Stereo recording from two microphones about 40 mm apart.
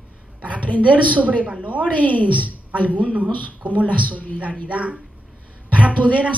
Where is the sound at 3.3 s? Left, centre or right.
Left.